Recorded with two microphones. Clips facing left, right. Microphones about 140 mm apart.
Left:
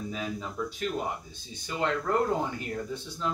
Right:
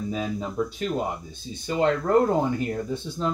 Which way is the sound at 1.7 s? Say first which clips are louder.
Right 7 dB; 40° right (ahead or behind).